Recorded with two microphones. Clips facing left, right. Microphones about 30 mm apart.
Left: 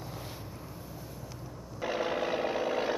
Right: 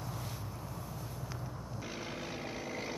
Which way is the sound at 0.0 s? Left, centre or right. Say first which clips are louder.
Left 1 dB; centre.